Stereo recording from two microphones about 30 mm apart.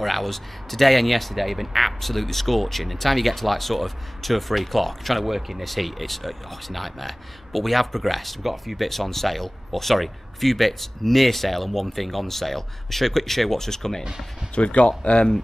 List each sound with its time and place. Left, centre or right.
0.0 s speech: centre
14.5 s speech: left